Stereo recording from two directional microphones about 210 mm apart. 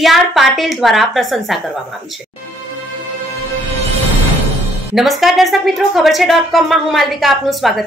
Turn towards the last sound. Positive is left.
turn(degrees=0)  # may be behind; listen again after turning